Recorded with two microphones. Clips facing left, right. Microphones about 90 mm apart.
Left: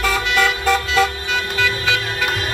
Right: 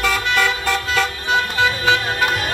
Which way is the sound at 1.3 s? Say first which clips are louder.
Right 3 dB; 35° right (ahead or behind).